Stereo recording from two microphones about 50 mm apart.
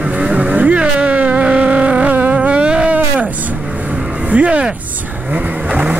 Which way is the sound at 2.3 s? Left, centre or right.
Right.